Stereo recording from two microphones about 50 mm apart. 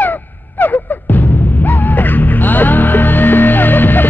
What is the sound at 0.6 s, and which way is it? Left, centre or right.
Music, left.